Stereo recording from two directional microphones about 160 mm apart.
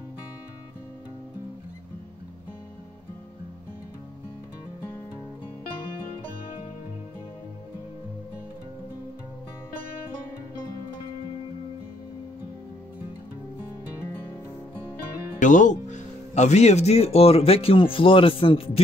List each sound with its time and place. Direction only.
15.3 s speech: 55° left (ahead or behind); by 18.6 s 35° left (ahead or behind)